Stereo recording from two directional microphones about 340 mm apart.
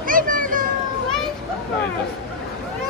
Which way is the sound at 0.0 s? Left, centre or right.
Right.